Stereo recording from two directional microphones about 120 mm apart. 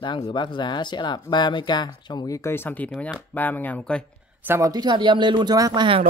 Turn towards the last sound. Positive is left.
turn(degrees=-35)  # may be behind; listen again after turning